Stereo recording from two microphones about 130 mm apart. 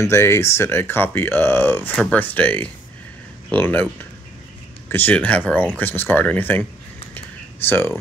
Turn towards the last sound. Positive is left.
turn(degrees=15)  # may be behind; listen again after turning